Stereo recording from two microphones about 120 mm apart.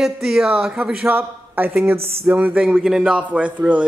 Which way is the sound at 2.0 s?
55° right (ahead or behind).